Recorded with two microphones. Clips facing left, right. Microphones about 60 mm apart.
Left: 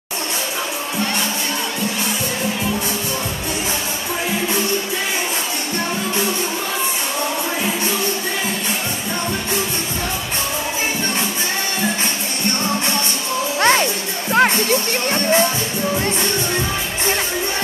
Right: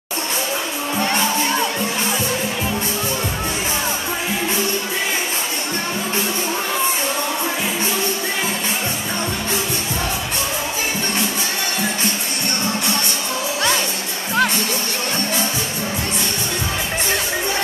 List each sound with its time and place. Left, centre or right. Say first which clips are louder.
13.6 s music: left 7 dB; left